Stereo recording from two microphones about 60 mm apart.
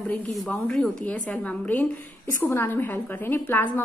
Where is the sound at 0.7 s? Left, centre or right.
Centre.